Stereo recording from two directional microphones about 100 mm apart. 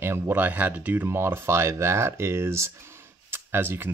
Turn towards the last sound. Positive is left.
turn(degrees=-20)  # may be behind; listen again after turning